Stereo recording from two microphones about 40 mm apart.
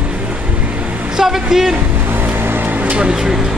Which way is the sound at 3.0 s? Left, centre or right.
Centre.